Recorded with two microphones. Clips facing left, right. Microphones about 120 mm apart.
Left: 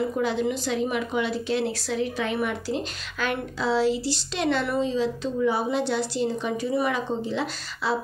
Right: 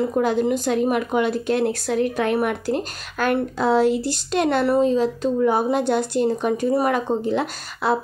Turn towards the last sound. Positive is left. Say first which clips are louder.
# right 5 dB
turn(degrees=-55)  # may be behind; listen again after turning